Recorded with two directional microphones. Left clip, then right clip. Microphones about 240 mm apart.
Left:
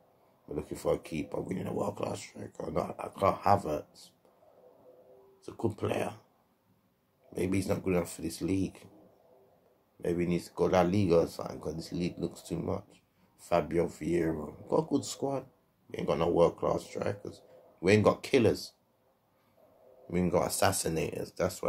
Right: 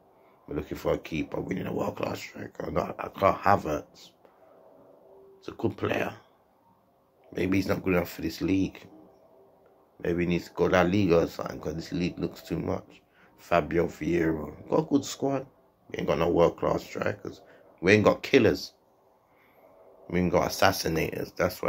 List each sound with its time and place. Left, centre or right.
0.5 s speech: centre
5.4 s speech: centre
7.3 s speech: centre
10.0 s speech: centre
20.1 s speech: centre